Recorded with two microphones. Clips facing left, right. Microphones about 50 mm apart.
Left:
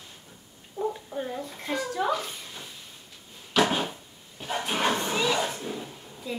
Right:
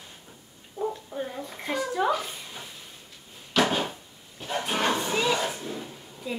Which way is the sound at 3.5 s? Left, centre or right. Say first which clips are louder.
Even; centre.